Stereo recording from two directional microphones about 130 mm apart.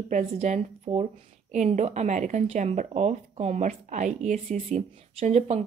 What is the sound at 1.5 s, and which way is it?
Speech, 65° right (ahead or behind).